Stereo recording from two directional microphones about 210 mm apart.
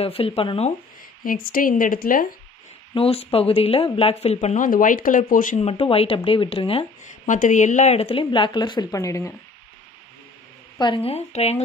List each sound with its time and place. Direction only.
0.0 s speech: 25° left (ahead or behind)
1.2 s a woman's voice: 40° left (ahead or behind)
2.9 s speech: 25° left (ahead or behind)
10.8 s speech: 25° left (ahead or behind)